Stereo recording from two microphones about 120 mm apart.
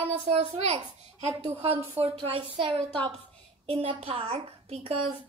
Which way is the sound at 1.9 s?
55° right (ahead or behind).